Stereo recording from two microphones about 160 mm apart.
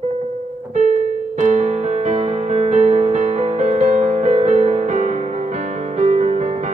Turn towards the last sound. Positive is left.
turn(degrees=-45)  # may be behind; listen again after turning